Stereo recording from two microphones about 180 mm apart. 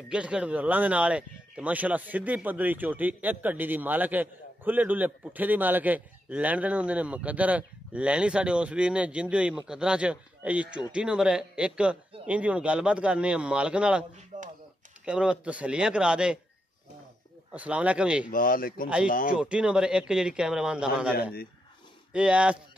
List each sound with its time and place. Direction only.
0.1 s speech: 5° right (ahead or behind)
14.3 s a sound: 45° right (ahead or behind)
15.0 s a man's voice: 5° right (ahead or behind)
17.6 s speech: 5° right (ahead or behind)
18.3 s speech: 50° left (ahead or behind)
19.3 s a man's voice: 5° right (ahead or behind)
22.1 s a man's voice: 5° right (ahead or behind)